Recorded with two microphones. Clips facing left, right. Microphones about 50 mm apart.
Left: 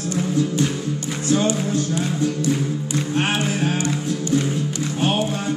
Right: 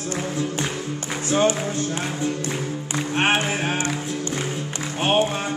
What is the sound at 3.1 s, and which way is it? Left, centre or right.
Music, right.